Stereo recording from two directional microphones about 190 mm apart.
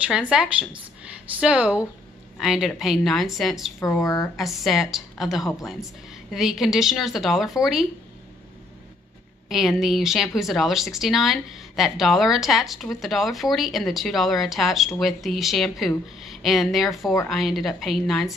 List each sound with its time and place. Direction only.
0.0 s speech: 5° right (ahead or behind)
4.0 s a woman's voice: 15° left (ahead or behind)
4.4 s speech: centre (ahead or behind)
9.5 s speech: centre (ahead or behind)